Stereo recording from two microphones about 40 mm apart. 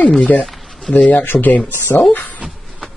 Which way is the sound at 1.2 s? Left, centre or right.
Left.